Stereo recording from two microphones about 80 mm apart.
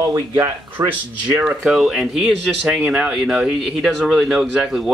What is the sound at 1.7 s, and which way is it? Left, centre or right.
Speech, centre.